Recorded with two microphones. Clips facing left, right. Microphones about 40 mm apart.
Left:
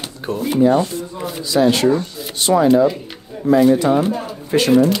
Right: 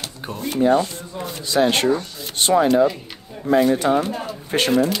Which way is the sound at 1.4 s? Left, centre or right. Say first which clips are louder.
Left 3 dB; right.